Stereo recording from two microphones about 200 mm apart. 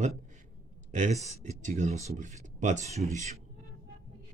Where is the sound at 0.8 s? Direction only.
35° right (ahead or behind).